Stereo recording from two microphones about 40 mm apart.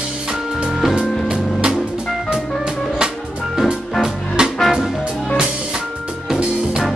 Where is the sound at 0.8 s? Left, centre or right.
Centre.